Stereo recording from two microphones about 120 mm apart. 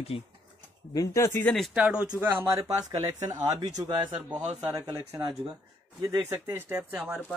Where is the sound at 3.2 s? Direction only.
35° right (ahead or behind); by 7.2 s 15° right (ahead or behind).